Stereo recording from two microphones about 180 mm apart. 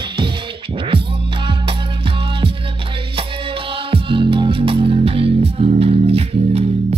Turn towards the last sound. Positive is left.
turn(degrees=-35)  # may be behind; listen again after turning